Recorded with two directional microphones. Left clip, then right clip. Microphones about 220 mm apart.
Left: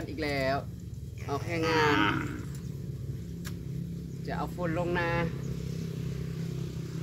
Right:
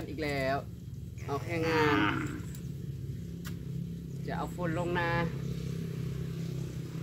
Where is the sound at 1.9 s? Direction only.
50° left (ahead or behind).